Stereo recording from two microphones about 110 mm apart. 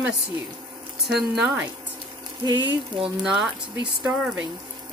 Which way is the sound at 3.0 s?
5° right (ahead or behind).